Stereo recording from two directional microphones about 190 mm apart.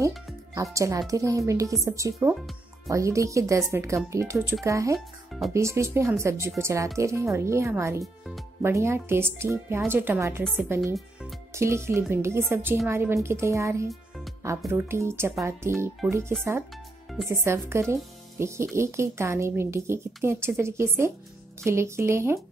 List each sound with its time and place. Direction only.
0.6 s speech: 15° right (ahead or behind)
4.9 s speech: centre (ahead or behind)
5.5 s speech: 15° right (ahead or behind)
10.4 s speech: centre (ahead or behind)
11.5 s speech: 15° right (ahead or behind)
13.8 s music: centre (ahead or behind)
14.7 s speech: 15° right (ahead or behind)